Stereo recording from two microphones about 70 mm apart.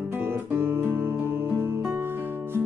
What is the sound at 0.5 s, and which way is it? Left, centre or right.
Music, right.